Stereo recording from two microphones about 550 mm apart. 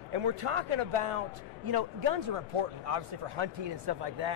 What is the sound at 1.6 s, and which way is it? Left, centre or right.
Speech, right.